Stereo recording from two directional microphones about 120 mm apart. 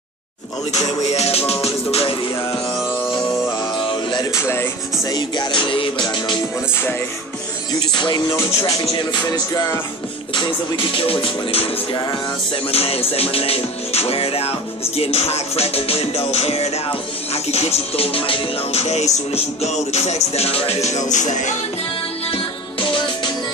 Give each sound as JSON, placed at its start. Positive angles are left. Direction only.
{"t": 1.1, "sound": "music", "side_deg": 60}
{"t": 3.5, "sound": "music", "side_deg": 40}
{"t": 4.3, "sound": "music", "side_deg": 20}
{"t": 7.9, "sound": "music", "side_deg": 40}
{"t": 8.3, "sound": "music", "side_deg": 25}
{"t": 8.8, "sound": "music", "side_deg": 40}
{"t": 10.3, "sound": "music", "side_deg": 45}
{"t": 22.3, "sound": "music", "side_deg": 45}